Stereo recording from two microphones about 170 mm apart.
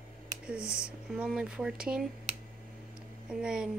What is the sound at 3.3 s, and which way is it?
Speech, 5° right (ahead or behind).